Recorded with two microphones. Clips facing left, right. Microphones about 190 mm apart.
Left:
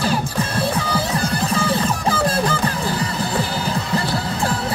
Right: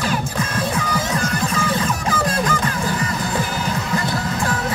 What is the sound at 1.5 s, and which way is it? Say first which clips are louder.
Music: left 1 dB; 35° left (ahead or behind).